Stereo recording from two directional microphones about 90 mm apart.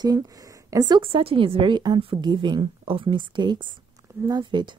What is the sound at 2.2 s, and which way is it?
A woman's voice, 55° right (ahead or behind).